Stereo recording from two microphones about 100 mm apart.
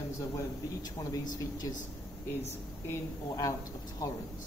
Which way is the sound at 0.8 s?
40° left (ahead or behind).